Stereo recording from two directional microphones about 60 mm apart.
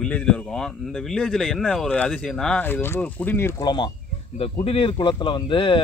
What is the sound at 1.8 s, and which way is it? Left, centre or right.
Speech, centre.